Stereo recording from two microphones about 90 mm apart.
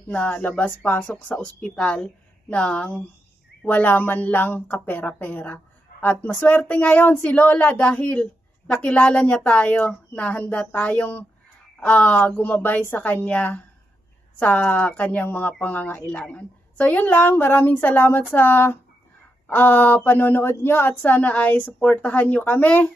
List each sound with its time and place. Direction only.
0.1 s a woman's voice: 15° left (ahead or behind)